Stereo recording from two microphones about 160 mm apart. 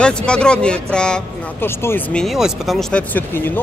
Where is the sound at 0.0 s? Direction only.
5° left (ahead or behind).